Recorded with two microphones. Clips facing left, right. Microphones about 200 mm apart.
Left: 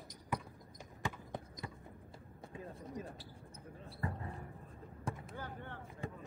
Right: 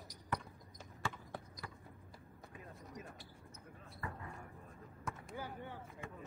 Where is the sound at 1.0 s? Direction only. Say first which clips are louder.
Left 2 dB; 20° left (ahead or behind).